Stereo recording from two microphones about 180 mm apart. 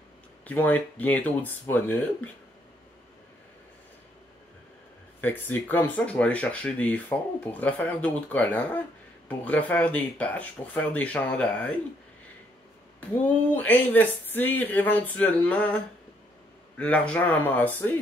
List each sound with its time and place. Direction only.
0.5 s speech: 10° left (ahead or behind)
5.2 s speech: 10° left (ahead or behind)
13.5 s speech: 10° left (ahead or behind)